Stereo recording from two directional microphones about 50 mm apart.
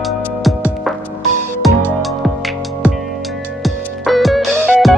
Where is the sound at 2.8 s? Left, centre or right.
Right.